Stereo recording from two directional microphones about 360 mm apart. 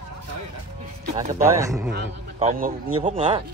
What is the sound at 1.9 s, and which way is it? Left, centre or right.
A man's voice, right.